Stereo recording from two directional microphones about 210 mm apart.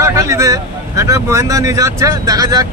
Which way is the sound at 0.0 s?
15° right (ahead or behind).